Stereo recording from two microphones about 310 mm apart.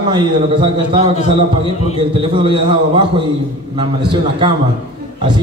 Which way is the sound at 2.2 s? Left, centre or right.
Centre.